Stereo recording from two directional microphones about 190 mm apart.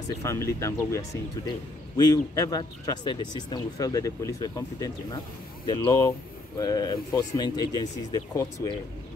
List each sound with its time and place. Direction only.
0.1 s a man's voice: 15° left (ahead or behind)